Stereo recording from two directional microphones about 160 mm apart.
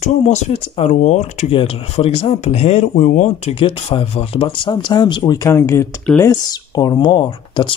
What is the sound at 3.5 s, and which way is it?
Speech, 35° left (ahead or behind).